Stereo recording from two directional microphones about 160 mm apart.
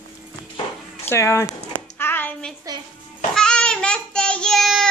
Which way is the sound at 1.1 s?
15° left (ahead or behind).